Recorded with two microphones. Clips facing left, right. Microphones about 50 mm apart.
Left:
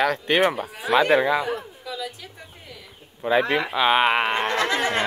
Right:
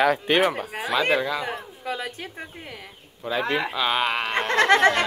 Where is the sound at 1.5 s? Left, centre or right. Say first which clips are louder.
Left 1 dB; right.